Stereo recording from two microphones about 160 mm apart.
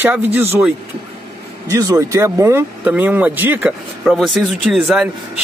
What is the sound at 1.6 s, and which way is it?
Speech, 20° right (ahead or behind).